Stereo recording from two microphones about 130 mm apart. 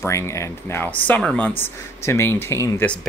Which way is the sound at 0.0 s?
20° left (ahead or behind).